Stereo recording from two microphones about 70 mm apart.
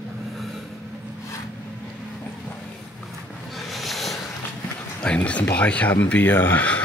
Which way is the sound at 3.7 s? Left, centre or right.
Centre.